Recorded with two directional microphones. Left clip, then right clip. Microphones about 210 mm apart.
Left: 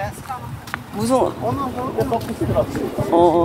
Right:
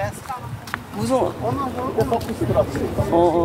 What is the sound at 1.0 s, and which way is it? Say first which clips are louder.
Speech: left 3 dB; 40° left (ahead or behind).